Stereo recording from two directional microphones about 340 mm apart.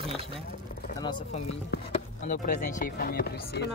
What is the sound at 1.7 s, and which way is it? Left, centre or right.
Speech, left.